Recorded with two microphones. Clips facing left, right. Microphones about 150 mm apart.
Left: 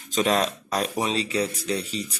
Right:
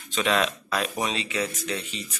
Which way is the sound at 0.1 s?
40° left (ahead or behind).